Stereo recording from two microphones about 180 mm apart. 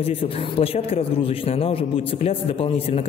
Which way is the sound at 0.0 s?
30° left (ahead or behind).